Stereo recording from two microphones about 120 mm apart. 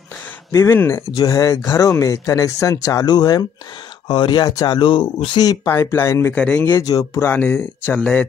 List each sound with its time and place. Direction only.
0.5 s speech: 20° left (ahead or behind); by 5.6 s 35° left (ahead or behind)
5.7 s speech: 20° left (ahead or behind)
6.3 s speech: 10° left (ahead or behind)
6.6 s speech: 25° left (ahead or behind)
7.2 s speech: 20° left (ahead or behind)